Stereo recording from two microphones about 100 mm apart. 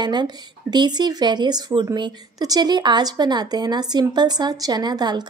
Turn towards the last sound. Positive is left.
turn(degrees=-45)  # may be behind; listen again after turning